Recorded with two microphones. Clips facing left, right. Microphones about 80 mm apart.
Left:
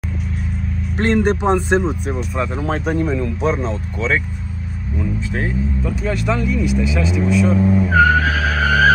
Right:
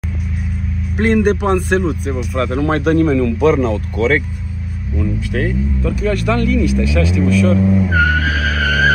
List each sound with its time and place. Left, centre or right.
0.9 s a man's voice: centre
2.6 s speech: right
4.9 s speech: centre
8.3 s vehicle: centre